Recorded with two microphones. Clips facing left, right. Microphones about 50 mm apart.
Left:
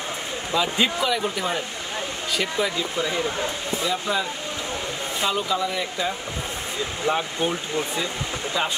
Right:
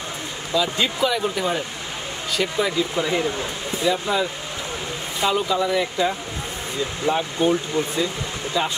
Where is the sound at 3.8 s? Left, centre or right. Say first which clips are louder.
Right 5 dB; centre.